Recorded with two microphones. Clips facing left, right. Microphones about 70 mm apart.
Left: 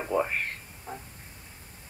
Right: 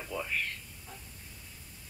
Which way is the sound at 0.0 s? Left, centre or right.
Left.